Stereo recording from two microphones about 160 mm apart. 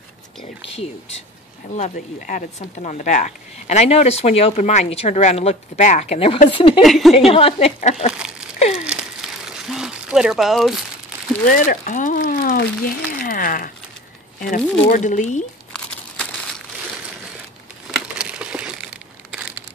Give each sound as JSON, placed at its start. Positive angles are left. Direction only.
{"t": 0.4, "sound": "a sound", "side_deg": 35}
{"t": 1.8, "sound": "speech", "side_deg": 55}
{"t": 6.8, "sound": "a woman's voice", "side_deg": 0}
{"t": 7.2, "sound": "speech", "side_deg": 40}
{"t": 8.1, "sound": "a sound", "side_deg": -5}
{"t": 8.5, "sound": "crumpling", "side_deg": 45}
{"t": 8.8, "sound": "crumpling", "side_deg": -5}
{"t": 11.4, "sound": "speech", "side_deg": 60}
{"t": 13.2, "sound": "a sound", "side_deg": 60}
{"t": 14.4, "sound": "speech", "side_deg": 55}
{"t": 15.7, "sound": "crumpling", "side_deg": 5}
{"t": 17.9, "sound": "a sound", "side_deg": -5}